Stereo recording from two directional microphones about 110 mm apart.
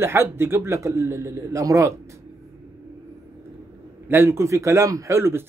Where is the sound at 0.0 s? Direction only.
20° right (ahead or behind).